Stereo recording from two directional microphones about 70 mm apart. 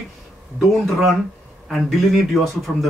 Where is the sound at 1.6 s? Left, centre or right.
Centre.